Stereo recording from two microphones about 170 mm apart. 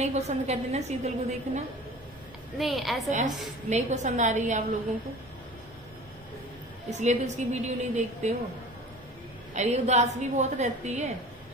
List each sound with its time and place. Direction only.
0.0 s a woman's voice: 40° right (ahead or behind)
2.6 s a woman's voice: centre (ahead or behind)
3.7 s a woman's voice: 45° right (ahead or behind)
6.9 s a woman's voice: 45° right (ahead or behind)
9.6 s a woman's voice: 40° right (ahead or behind)